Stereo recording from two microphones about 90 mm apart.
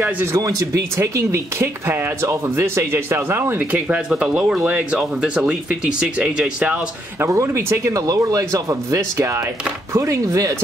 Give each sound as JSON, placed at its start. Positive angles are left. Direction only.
{"t": 0.0, "sound": "speech", "side_deg": -25}
{"t": 0.4, "sound": "speech", "side_deg": -40}
{"t": 7.2, "sound": "speech", "side_deg": -35}